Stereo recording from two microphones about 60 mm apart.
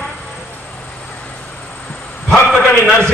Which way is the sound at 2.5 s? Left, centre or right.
Centre.